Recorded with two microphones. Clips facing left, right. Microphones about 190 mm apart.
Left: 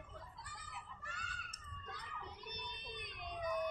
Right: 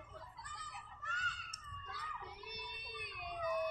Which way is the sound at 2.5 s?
5° right (ahead or behind).